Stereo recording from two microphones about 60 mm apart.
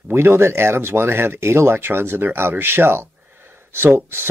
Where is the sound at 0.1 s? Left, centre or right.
Right.